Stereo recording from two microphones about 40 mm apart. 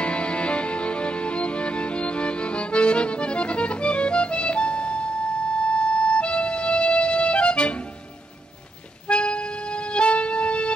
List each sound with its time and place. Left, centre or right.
0.0 s music: left
9.0 s music: left